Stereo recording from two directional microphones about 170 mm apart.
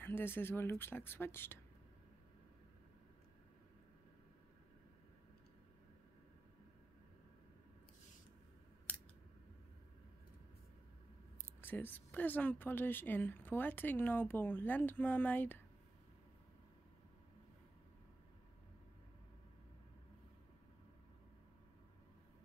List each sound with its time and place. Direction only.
0.0 s speech: 15° left (ahead or behind)
8.9 s scissors: 10° left (ahead or behind)
11.6 s speech: 10° left (ahead or behind)